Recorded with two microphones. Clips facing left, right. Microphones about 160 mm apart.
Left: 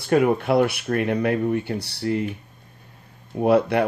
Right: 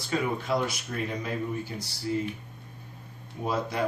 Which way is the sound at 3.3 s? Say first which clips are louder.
Left 12 dB; 65° left (ahead or behind).